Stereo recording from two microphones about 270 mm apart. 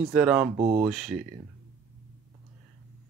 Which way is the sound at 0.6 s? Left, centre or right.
Right.